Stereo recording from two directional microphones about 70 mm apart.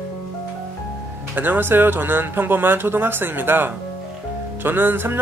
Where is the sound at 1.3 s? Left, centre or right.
Right.